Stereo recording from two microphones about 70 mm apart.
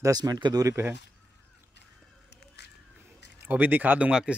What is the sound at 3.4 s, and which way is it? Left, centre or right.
Speech, right.